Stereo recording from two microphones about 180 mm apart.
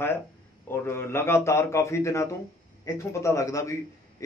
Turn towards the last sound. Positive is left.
turn(degrees=15)  # may be behind; listen again after turning